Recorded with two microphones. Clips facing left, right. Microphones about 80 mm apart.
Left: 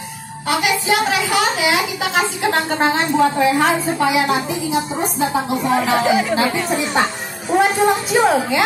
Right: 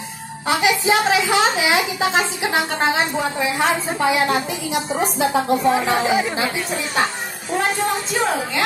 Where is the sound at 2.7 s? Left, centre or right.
Centre.